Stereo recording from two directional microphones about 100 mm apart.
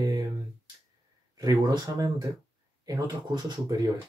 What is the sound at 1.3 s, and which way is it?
Speech, 40° right (ahead or behind).